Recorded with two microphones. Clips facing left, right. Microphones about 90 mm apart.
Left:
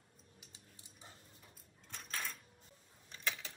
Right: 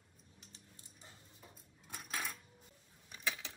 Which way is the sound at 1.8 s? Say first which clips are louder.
Right 2 dB; 10° right (ahead or behind).